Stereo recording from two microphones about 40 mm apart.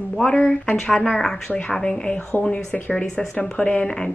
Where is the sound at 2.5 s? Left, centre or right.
Left.